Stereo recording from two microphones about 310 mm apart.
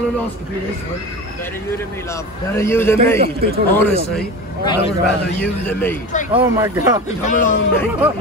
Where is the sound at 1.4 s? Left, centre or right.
Centre.